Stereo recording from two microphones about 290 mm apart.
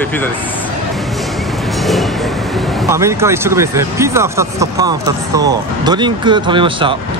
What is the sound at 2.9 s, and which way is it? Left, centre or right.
Speech, centre.